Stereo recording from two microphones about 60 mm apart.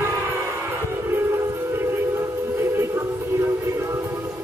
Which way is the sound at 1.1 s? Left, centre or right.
Right.